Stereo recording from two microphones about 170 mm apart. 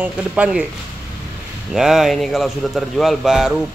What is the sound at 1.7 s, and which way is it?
A man's voice, 5° right (ahead or behind).